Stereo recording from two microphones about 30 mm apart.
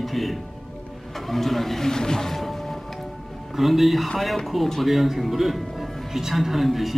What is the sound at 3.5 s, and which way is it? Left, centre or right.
Speech, centre.